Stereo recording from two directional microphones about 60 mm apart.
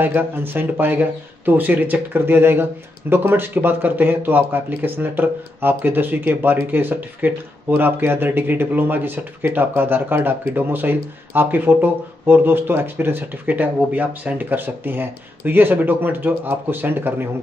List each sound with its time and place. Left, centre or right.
0.0 s speech: right
2.1 s speech: right